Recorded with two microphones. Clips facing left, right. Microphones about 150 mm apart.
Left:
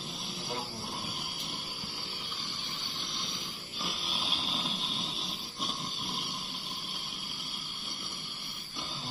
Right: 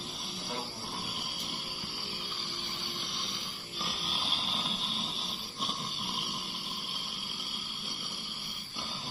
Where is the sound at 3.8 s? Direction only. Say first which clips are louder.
Even; centre (ahead or behind).